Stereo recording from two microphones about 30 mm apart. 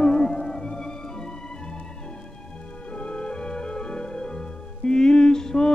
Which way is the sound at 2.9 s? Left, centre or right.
Left.